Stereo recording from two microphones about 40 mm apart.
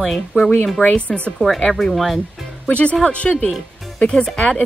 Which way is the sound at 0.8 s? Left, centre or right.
Left.